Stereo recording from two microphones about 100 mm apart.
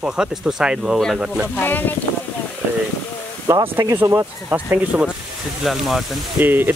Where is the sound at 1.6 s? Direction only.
20° left (ahead or behind).